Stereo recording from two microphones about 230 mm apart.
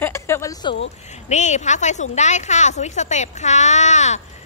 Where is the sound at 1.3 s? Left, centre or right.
Left.